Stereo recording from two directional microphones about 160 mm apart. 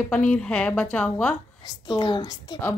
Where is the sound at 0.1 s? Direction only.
10° left (ahead or behind).